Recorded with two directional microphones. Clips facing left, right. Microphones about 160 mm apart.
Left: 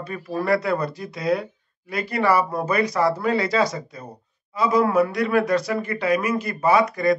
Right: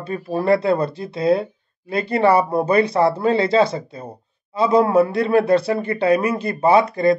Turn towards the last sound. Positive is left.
turn(degrees=-25)  # may be behind; listen again after turning